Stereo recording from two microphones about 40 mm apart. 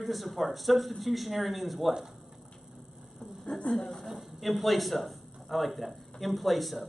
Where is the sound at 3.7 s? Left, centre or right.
Centre.